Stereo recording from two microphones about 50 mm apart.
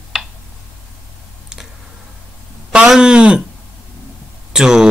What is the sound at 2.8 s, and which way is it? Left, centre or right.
Speech, centre.